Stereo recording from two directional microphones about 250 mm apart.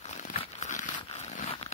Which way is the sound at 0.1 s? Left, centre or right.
Left.